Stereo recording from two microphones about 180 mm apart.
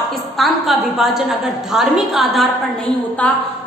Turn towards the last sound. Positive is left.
turn(degrees=10)  # may be behind; listen again after turning